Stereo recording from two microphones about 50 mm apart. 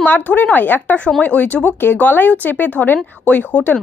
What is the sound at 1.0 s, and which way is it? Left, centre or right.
Speech, centre.